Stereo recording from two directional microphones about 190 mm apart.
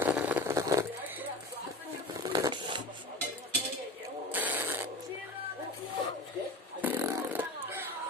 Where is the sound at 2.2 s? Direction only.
20° right (ahead or behind).